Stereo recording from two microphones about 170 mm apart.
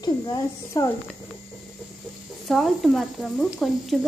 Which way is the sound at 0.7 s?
20° left (ahead or behind).